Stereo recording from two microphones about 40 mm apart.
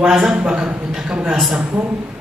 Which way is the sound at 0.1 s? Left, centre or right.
Centre.